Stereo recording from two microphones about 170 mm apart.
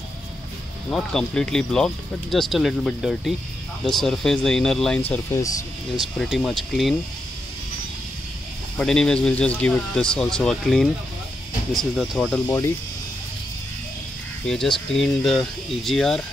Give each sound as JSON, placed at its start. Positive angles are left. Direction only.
{"t": 0.8, "sound": "speech", "side_deg": 5}
{"t": 5.1, "sound": "speech", "side_deg": 20}
{"t": 5.9, "sound": "speech", "side_deg": 0}
{"t": 8.7, "sound": "speech", "side_deg": 5}
{"t": 12.4, "sound": "speech", "side_deg": 15}
{"t": 14.4, "sound": "speech", "side_deg": 0}